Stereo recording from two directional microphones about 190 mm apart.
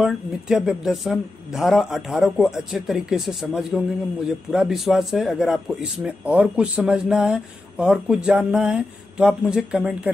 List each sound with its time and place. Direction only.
0.0 s speech: 5° right (ahead or behind)